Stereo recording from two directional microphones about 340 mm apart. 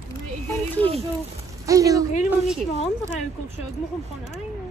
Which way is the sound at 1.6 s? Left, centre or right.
Centre.